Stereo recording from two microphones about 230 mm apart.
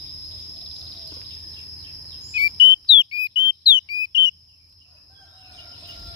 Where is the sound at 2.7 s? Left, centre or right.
Left.